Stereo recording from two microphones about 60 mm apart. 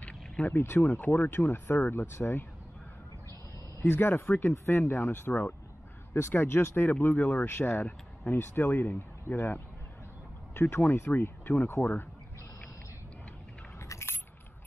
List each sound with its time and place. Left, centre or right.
0.0 s a sound: left
0.6 s speech: left
1.0 s speech: left
3.8 s speech: left
6.1 s speech: left
10.5 s a sound: left
10.9 s speech: left
13.7 s keys jangling: left